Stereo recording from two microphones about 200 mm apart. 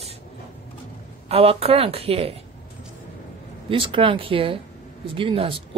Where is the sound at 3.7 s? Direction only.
25° right (ahead or behind).